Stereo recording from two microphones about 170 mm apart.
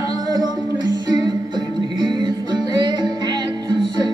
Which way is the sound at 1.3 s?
25° right (ahead or behind).